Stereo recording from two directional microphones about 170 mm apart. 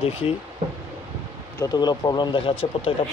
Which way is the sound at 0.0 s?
35° left (ahead or behind).